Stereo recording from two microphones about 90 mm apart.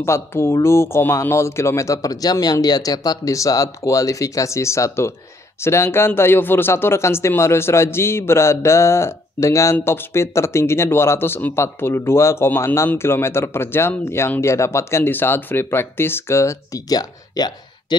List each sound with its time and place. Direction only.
0.0 s speech: 30° left (ahead or behind); by 17.9 s 45° left (ahead or behind)